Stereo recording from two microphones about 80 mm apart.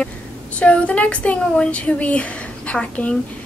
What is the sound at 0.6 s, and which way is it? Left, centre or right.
A woman's voice, centre.